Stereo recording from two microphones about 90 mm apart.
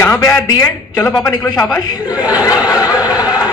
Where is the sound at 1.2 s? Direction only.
40° left (ahead or behind).